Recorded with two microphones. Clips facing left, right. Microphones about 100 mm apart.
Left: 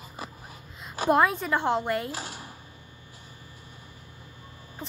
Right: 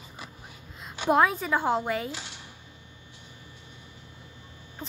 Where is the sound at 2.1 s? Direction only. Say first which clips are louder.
Left 3 dB; 40° left (ahead or behind).